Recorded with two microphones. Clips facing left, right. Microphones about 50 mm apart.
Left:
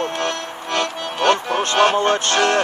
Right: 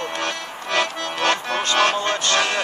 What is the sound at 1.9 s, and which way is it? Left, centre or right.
Music, left.